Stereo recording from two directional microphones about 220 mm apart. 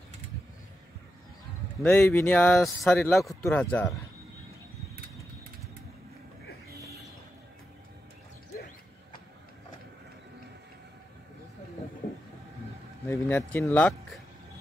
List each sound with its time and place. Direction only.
1.8 s speech: 10° left (ahead or behind)
12.0 s a sound: 35° left (ahead or behind)
13.0 s speech: 10° left (ahead or behind)